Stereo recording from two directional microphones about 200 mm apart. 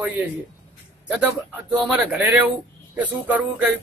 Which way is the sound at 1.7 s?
5° right (ahead or behind).